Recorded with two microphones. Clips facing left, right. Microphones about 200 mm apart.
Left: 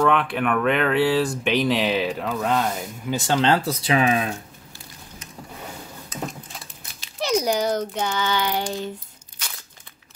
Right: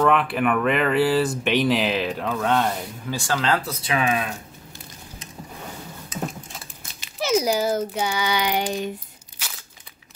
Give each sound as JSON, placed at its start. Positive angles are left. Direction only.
{"t": 0.0, "sound": "speech", "side_deg": 0}
{"t": 3.1, "sound": "speech", "side_deg": 20}
{"t": 6.0, "sound": "a sound", "side_deg": -5}